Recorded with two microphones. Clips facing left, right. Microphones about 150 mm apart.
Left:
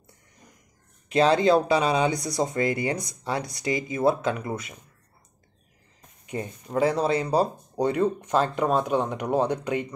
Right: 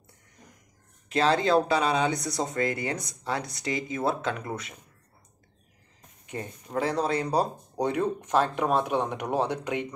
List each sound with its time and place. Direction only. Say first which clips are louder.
1.2 s speech: left 3 dB; 15° left (ahead or behind)
6.2 s speech: left 4 dB; 15° left (ahead or behind); by 9.8 s centre (ahead or behind)